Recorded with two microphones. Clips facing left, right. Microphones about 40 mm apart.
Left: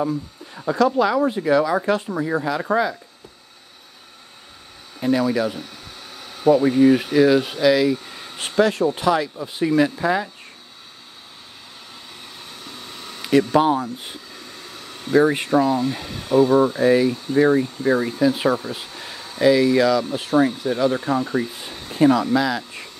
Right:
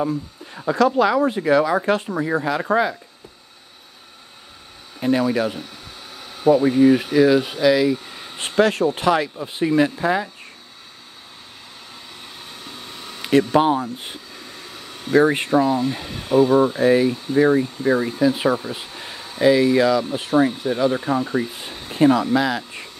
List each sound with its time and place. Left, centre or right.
0.7 s speech: right
1.9 s speech: right
5.0 s speech: right
5.6 s speech: centre
8.5 s speech: right
9.4 s speech: right; by 10.3 s centre
12.6 s a sound: centre
13.4 s speech: right
13.9 s speech: right
14.3 s a sound: centre
15.2 s speech: right
15.5 s speech: centre